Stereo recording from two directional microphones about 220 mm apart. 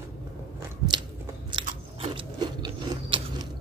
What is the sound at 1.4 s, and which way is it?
Crunch, 20° right (ahead or behind).